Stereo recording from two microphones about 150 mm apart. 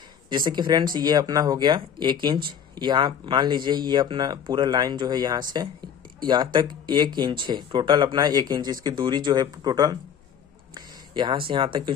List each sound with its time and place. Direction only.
0.5 s speech: 30° right (ahead or behind)